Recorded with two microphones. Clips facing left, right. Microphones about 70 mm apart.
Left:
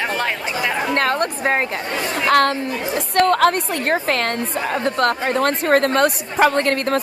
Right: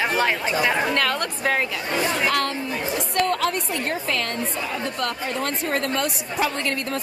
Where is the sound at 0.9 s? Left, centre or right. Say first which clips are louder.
Left 5 dB; left.